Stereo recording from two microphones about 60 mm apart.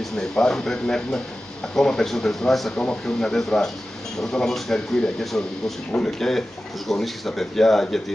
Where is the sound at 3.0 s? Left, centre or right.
Centre.